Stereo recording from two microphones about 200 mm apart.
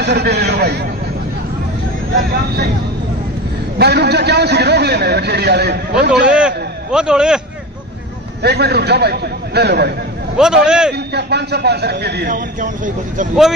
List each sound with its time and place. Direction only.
0.0 s a man's voice: 55° right (ahead or behind)
2.1 s speech: 55° right (ahead or behind)
3.7 s a man's voice: 55° right (ahead or behind)
6.2 s a man's voice: 5° right (ahead or behind)
8.4 s a man's voice: 55° right (ahead or behind)
10.3 s a man's voice: 5° right (ahead or behind)
10.9 s a man's voice: 55° right (ahead or behind); by 13.3 s 40° right (ahead or behind)